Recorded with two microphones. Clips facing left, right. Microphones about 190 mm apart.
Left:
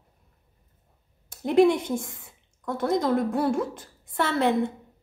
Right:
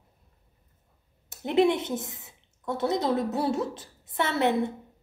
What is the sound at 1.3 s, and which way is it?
A woman's voice, 25° right (ahead or behind).